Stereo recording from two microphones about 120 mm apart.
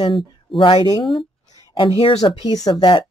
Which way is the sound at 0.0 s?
45° left (ahead or behind).